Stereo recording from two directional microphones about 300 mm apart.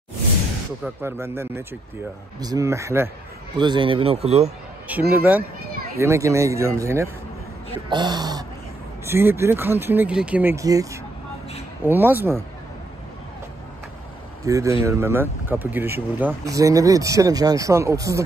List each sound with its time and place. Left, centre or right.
0.8 s speech: centre
5.1 s speech: centre
14.4 s speech: centre